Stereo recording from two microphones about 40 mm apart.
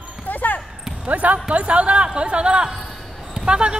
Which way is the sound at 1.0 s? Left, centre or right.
Right.